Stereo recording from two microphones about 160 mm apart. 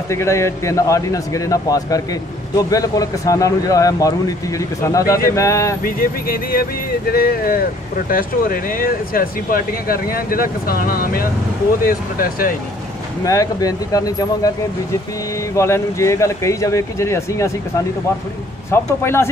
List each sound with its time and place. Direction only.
0.1 s a man's voice: 15° left (ahead or behind)
5.9 s speech: 65° left (ahead or behind)
13.2 s a man's voice: 20° left (ahead or behind)
15.5 s speech: 15° left (ahead or behind)
18.7 s speech: 15° left (ahead or behind)